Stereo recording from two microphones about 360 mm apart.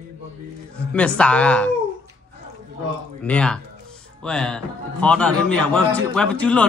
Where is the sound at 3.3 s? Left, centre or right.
Centre.